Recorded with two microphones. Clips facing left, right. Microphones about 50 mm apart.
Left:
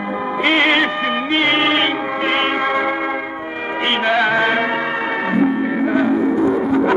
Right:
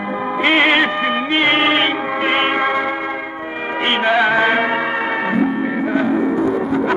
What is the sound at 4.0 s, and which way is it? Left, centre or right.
Music, centre.